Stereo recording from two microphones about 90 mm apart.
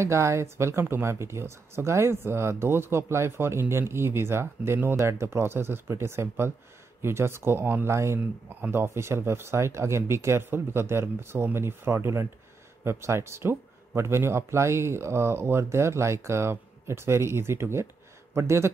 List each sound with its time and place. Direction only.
0.0 s speech: 30° right (ahead or behind)